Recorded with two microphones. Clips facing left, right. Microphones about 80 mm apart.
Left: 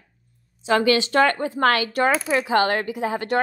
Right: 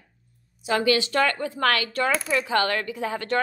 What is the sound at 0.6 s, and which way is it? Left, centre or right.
A woman's voice, left.